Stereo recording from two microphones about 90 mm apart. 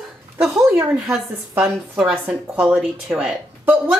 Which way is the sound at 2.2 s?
10° right (ahead or behind).